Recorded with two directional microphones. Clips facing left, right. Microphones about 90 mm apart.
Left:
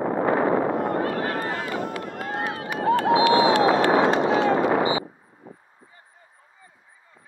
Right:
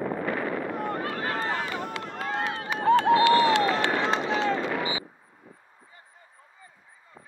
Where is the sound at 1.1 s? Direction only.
30° left (ahead or behind).